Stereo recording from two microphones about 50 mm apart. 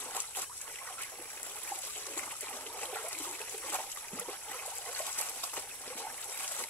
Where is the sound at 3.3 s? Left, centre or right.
Left.